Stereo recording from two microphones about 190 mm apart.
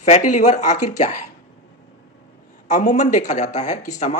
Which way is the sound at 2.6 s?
40° left (ahead or behind).